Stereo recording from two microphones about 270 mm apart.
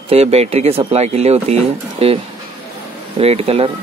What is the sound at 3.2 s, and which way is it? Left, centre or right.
Speech, right.